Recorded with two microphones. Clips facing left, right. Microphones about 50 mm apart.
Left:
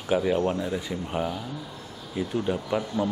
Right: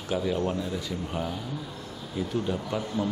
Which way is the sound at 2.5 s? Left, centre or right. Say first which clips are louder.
Left 3 dB; centre.